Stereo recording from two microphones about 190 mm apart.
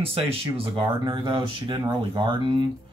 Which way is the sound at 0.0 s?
30° right (ahead or behind).